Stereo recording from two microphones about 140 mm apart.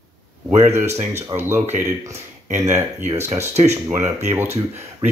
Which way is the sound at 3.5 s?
50° right (ahead or behind).